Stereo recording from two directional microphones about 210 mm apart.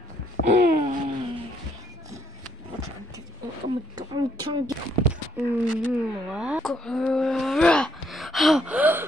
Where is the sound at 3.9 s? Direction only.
20° right (ahead or behind).